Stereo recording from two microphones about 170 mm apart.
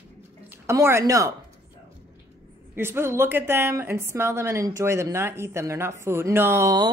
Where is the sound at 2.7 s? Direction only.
15° right (ahead or behind).